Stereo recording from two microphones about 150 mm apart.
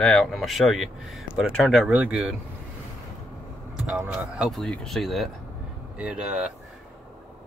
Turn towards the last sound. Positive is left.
turn(degrees=-5)  # may be behind; listen again after turning